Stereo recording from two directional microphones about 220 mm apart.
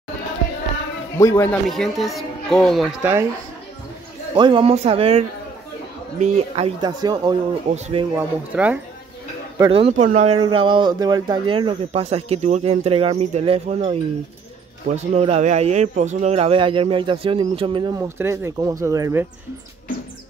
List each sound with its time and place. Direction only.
1.1 s speech: 10° left (ahead or behind); by 3.3 s 10° right (ahead or behind)
4.4 s speech: 20° right (ahead or behind)
8.2 s speech: 5° right (ahead or behind)
9.6 s speech: 25° right (ahead or behind)